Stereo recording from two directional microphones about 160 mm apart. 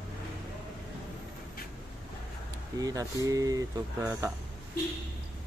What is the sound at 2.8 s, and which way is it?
Speech, 20° right (ahead or behind).